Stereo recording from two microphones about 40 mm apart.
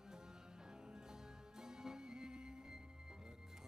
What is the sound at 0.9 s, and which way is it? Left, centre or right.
Music, centre.